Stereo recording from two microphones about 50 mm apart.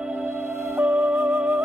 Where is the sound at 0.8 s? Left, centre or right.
Right.